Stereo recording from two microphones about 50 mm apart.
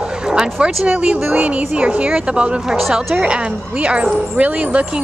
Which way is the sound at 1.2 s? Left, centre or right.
Right.